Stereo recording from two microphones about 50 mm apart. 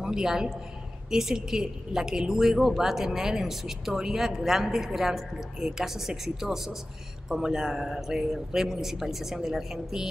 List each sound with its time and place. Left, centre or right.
0.0 s a man's voice: centre